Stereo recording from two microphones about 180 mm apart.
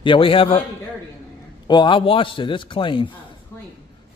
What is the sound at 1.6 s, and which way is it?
A man's voice, 25° left (ahead or behind).